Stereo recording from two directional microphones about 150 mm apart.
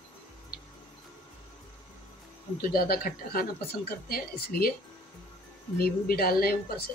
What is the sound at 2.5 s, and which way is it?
Speech, 85° left.